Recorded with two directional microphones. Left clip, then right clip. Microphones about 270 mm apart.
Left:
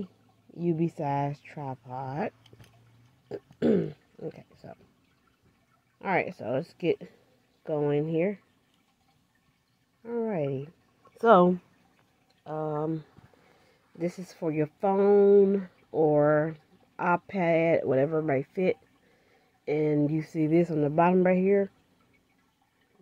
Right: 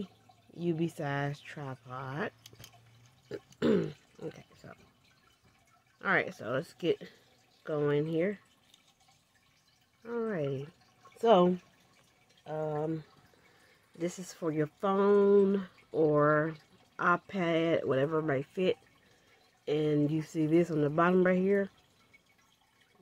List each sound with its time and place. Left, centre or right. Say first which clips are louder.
0.6 s speech: left 4 dB; centre
5.9 s speech: left 2 dB; centre
10.0 s speech: left 4 dB; centre